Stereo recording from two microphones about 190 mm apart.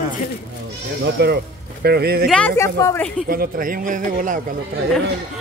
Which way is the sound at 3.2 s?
50° right (ahead or behind).